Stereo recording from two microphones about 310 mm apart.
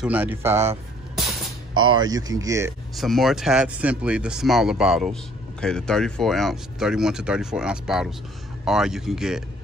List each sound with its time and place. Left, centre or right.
0.0 s speech: centre